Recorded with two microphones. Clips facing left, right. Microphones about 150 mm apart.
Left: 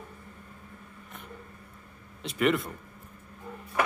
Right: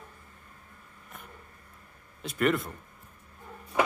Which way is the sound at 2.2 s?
Centre (ahead or behind).